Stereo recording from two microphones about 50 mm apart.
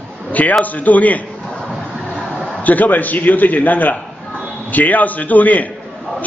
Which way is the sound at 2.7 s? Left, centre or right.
Left.